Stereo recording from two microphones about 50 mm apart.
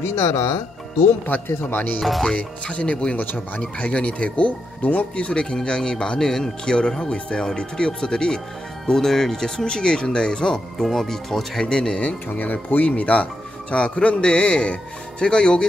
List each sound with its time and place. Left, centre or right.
0.0 s speech: left
1.6 s speech: left
2.2 s speech: centre
12.3 s speech: left; by 15.6 s centre